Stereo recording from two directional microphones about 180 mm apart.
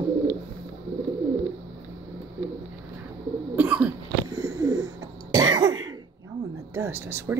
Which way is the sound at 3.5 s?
10° right (ahead or behind).